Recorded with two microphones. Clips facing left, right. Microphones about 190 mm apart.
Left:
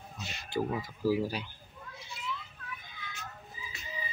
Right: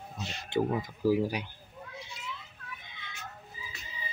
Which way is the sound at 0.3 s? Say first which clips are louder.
Right 3 dB; 30° right (ahead or behind).